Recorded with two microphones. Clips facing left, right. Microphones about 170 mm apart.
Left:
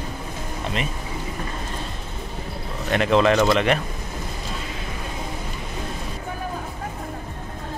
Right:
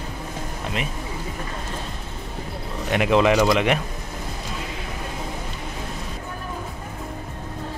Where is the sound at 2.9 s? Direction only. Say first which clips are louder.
Even; 10° right (ahead or behind).